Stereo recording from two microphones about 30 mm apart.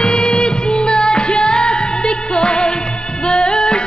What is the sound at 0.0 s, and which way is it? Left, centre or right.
Music, left.